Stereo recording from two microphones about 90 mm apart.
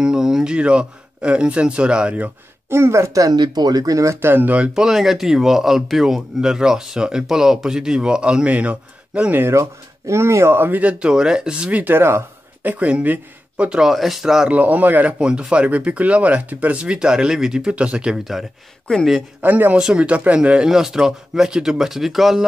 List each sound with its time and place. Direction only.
0.0 s speech: 5° right (ahead or behind)
2.8 s speech: 30° right (ahead or behind)
4.7 s speech: 5° right (ahead or behind)
9.5 s speech: 35° right (ahead or behind)
12.6 s speech: 15° right (ahead or behind); by 19.2 s centre (ahead or behind)
19.4 s speech: 20° right (ahead or behind); by 22.4 s 5° right (ahead or behind)